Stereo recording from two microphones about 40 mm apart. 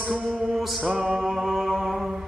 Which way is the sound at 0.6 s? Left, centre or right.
Centre.